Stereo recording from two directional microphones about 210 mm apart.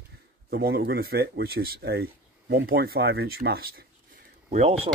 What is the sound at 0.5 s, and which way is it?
Speech, 50° right (ahead or behind).